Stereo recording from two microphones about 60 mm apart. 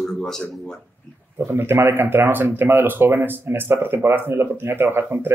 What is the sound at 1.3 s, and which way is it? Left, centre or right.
Speech, right.